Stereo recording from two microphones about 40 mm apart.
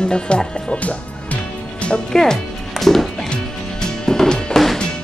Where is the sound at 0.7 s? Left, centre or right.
Left.